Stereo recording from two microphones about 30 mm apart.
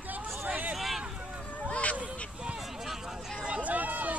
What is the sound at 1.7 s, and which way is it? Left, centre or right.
Honk, left.